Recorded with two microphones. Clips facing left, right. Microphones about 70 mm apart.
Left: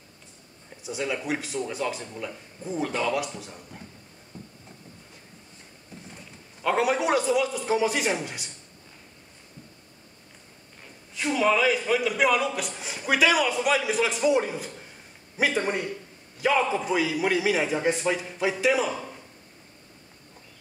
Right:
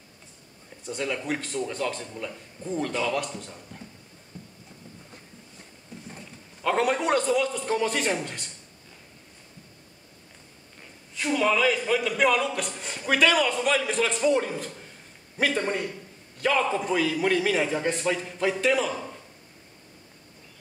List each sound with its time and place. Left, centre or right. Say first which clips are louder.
0.8 s speech: even; centre
4.3 s a sound: left 1 dB; left
6.6 s speech: even; centre
11.1 s speech: left 1 dB; centre